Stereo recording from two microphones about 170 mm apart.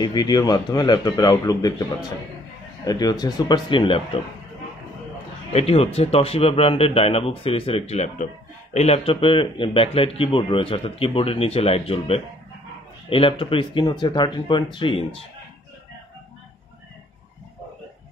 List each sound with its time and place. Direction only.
0.0 s speech: 25° left (ahead or behind)
2.8 s speech: 20° left (ahead or behind)
5.5 s speech: 35° left (ahead or behind)